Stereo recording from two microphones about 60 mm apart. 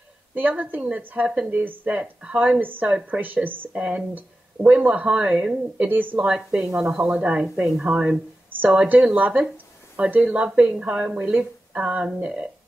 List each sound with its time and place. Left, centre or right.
0.3 s speech: right
2.0 s speech: centre
2.6 s speech: right
5.9 s speech: right
6.1 s speech: centre